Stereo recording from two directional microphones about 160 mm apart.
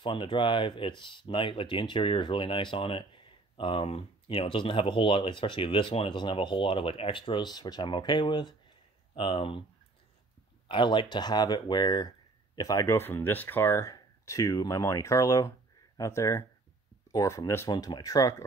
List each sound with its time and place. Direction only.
0.0 s speech: 30° left (ahead or behind)
10.7 s speech: 30° left (ahead or behind)